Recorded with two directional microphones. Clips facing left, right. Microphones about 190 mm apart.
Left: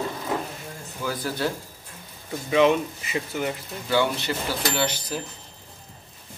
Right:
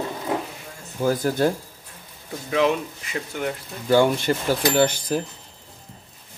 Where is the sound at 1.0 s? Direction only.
45° right (ahead or behind).